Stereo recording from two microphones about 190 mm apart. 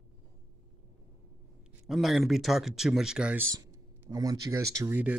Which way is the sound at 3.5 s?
20° right (ahead or behind).